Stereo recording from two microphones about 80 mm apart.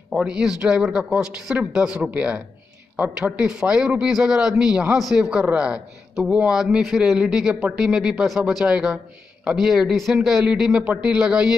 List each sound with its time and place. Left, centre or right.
0.2 s a man's voice: centre
10.8 s a man's voice: centre